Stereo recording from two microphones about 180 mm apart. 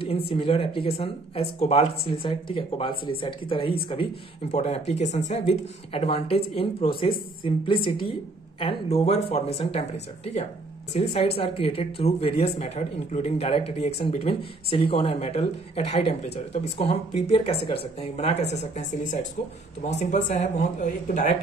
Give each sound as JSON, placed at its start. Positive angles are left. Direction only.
{"t": 0.0, "sound": "speech", "side_deg": 30}